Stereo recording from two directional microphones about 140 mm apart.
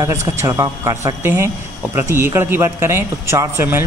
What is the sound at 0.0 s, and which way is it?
A man's voice, 20° right (ahead or behind).